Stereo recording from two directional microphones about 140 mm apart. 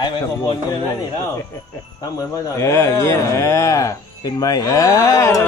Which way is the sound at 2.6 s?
20° left (ahead or behind).